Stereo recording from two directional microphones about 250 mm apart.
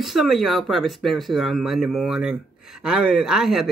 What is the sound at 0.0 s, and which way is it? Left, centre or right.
Speech, centre.